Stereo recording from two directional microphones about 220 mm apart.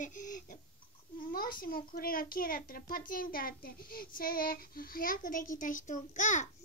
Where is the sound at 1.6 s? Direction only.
40° left (ahead or behind).